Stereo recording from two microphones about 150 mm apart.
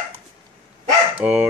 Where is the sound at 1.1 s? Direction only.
10° right (ahead or behind).